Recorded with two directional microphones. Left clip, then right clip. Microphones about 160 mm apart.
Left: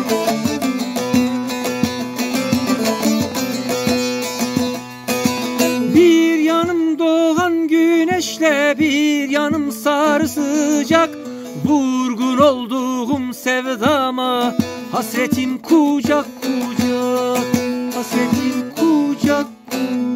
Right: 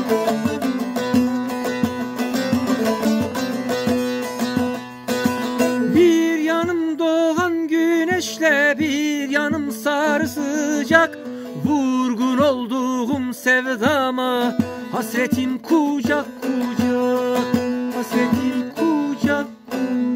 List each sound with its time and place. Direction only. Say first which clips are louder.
0.1 s music: left 1 dB; 50° left (ahead or behind)
5.9 s music: left 4 dB; 20° left (ahead or behind)
11.6 s a sound: left 3 dB; 15° left (ahead or behind)
15.0 s music: left 2 dB; 25° left (ahead or behind)
19.0 s music: left 4 dB; 25° left (ahead or behind)